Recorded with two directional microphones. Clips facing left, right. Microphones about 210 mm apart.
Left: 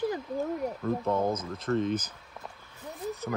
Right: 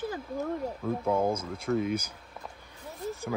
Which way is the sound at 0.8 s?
10° right (ahead or behind).